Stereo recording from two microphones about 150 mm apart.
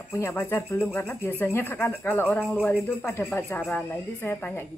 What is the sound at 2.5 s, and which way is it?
Speech, centre (ahead or behind).